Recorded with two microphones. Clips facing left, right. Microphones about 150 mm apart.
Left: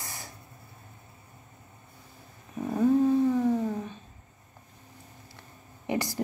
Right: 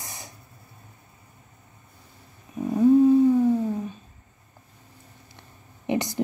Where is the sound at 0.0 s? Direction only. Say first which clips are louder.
Right 1 dB; 20° right (ahead or behind).